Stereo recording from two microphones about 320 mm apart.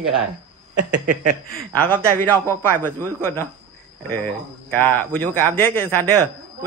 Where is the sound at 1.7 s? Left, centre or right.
Centre.